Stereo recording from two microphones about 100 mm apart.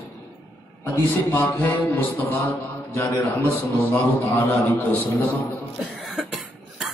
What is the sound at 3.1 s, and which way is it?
A man's voice, 30° left (ahead or behind).